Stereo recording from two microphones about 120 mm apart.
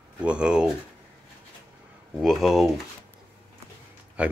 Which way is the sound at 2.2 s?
Centre (ahead or behind).